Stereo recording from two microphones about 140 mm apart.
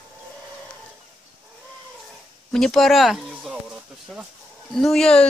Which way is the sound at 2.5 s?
Centre (ahead or behind).